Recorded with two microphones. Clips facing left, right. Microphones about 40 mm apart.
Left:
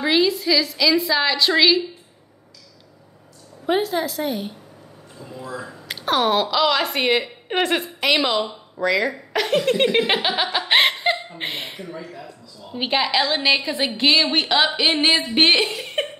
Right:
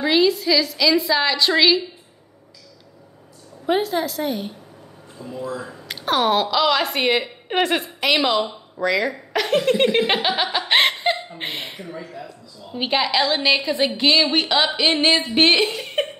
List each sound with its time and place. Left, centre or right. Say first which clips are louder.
0.0 s speech: right 1 dB; centre
3.6 s speech: even; centre